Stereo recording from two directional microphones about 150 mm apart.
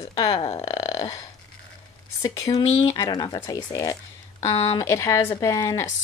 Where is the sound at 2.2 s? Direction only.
25° left (ahead or behind).